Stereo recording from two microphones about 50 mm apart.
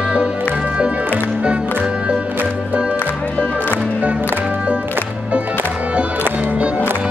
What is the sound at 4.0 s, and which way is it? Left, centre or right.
Music, right.